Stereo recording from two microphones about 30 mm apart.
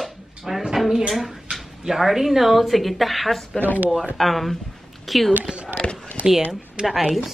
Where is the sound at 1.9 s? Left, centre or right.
Centre.